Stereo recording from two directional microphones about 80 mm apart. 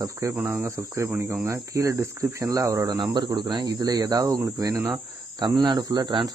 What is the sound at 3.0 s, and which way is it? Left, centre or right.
Speech, right.